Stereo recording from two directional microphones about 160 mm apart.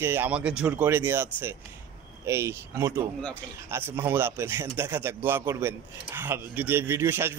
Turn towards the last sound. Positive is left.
turn(degrees=-15)  # may be behind; listen again after turning